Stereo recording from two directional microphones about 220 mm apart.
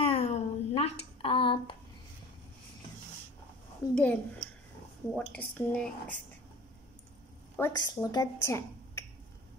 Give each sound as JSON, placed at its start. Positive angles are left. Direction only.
{"t": 0.0, "sound": "a sound", "side_deg": 25}
{"t": 3.8, "sound": "speech", "side_deg": 10}
{"t": 7.5, "sound": "speech", "side_deg": 15}